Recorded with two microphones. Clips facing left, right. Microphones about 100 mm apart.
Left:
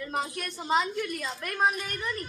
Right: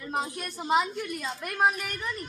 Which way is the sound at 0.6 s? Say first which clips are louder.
Right 1 dB; 5° right (ahead or behind).